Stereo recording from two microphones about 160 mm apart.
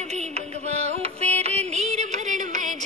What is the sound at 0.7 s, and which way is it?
Music, 45° right (ahead or behind).